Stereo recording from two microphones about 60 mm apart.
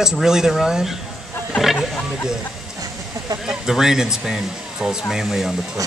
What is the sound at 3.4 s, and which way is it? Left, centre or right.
Speech, centre.